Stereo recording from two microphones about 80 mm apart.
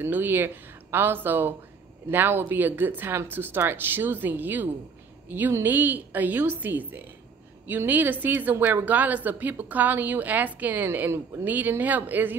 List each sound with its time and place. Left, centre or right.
0.0 s a woman's voice: right